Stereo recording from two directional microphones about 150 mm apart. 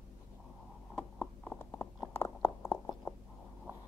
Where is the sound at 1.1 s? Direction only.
15° left (ahead or behind).